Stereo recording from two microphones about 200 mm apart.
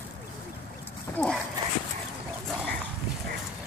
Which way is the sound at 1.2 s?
10° left (ahead or behind).